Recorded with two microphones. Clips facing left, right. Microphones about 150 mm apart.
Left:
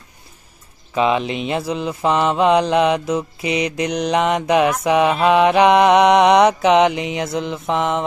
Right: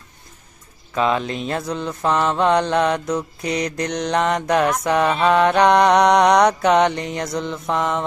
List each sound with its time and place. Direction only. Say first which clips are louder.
0.9 s speech: left 2 dB; 15° left (ahead or behind)
1.5 s mantra: left 3 dB; 5° left (ahead or behind)